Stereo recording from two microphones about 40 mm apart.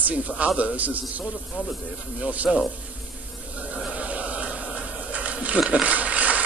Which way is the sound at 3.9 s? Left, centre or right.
Right.